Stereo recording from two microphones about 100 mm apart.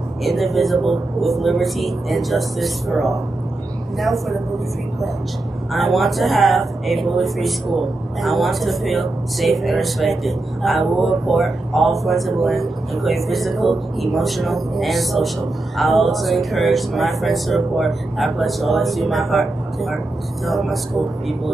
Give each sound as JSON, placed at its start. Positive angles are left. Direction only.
{"t": 0.2, "sound": "speech", "side_deg": 0}
{"t": 5.7, "sound": "speech", "side_deg": 0}